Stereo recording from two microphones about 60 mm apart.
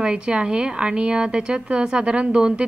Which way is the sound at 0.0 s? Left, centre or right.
Centre.